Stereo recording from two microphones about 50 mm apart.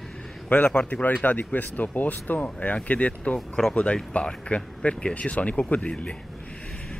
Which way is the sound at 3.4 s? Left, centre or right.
Centre.